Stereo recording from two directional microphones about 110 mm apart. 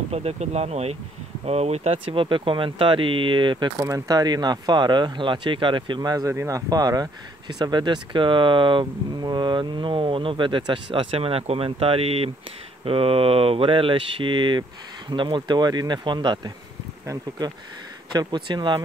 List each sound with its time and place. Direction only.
0.1 s speech: 75° right (ahead or behind); by 3.7 s 45° right (ahead or behind)
3.8 s speech: 35° right (ahead or behind)
17.0 s speech: 30° right (ahead or behind)
18.1 s speech: 45° right (ahead or behind)